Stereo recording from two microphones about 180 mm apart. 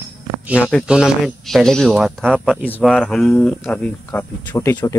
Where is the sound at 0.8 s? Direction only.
5° right (ahead or behind).